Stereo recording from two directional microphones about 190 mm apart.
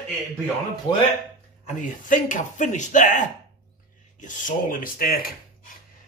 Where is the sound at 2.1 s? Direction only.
40° left (ahead or behind).